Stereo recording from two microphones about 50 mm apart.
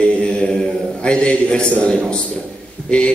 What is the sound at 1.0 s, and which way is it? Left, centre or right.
A man's voice, centre.